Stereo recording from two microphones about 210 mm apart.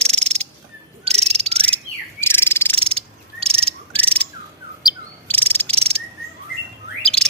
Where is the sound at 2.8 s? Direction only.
25° right (ahead or behind).